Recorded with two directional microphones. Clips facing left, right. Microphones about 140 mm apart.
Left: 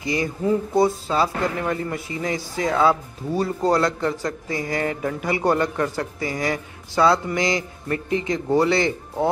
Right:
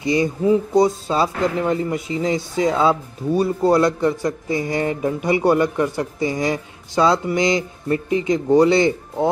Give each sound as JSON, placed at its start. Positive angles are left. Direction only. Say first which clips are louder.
{"t": 0.0, "sound": "a man's voice", "louder": "right 5 dB", "side_deg": -25}